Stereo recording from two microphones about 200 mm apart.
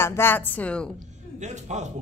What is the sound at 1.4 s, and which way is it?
Speech, 35° right (ahead or behind).